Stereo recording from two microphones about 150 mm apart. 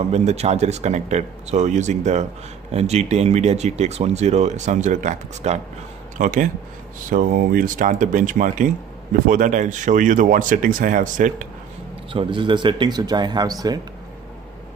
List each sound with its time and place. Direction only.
0.1 s speech: 45° right (ahead or behind)
12.1 s speech: 35° right (ahead or behind)